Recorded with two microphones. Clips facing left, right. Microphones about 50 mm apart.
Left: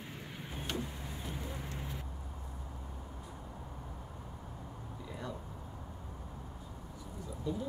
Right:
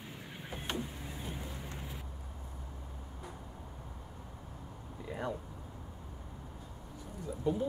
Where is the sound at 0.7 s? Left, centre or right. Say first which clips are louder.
Even; centre.